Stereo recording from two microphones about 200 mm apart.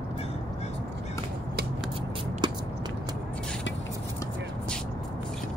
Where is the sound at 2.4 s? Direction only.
20° right (ahead or behind).